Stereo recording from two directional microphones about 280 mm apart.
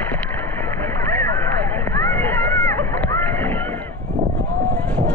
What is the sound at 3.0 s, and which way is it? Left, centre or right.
Rowboat, centre.